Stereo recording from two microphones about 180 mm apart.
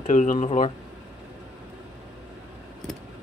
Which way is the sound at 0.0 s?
45° left (ahead or behind).